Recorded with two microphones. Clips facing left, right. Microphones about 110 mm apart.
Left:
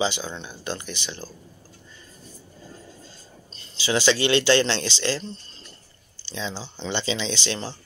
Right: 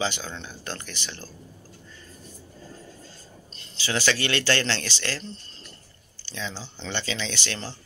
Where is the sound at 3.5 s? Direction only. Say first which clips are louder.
Left 5 dB; 20° left (ahead or behind).